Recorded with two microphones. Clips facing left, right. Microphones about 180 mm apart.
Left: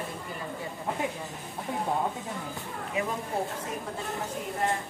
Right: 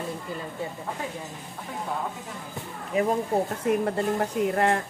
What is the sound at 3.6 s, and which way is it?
Speech, 65° right (ahead or behind).